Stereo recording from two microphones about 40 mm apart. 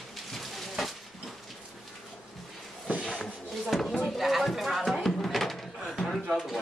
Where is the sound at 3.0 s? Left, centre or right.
Left.